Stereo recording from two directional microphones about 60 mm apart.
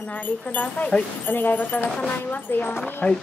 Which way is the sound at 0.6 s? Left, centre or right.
Left.